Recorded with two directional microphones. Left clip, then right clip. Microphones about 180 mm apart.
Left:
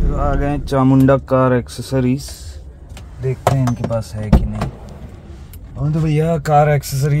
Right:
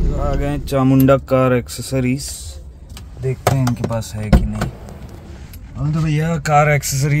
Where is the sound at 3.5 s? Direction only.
25° right (ahead or behind).